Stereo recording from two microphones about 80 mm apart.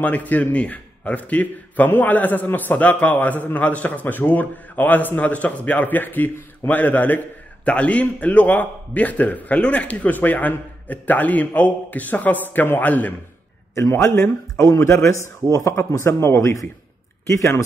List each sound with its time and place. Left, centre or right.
0.0 s a man's voice: centre
13.7 s a man's voice: left